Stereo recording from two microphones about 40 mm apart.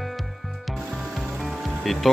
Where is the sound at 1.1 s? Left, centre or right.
Centre.